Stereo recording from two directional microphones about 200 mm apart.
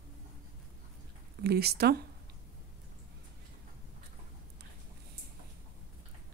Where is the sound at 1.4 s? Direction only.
55° right (ahead or behind).